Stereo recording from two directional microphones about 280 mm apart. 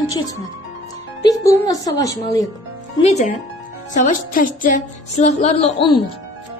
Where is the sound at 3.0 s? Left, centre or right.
Left.